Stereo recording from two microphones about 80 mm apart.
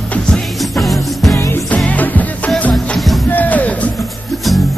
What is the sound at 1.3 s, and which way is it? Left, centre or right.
Music, left.